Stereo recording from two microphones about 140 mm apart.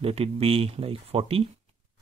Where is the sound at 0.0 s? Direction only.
45° right (ahead or behind).